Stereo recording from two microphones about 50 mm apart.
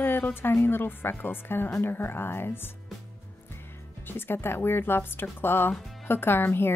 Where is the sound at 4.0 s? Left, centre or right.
Left.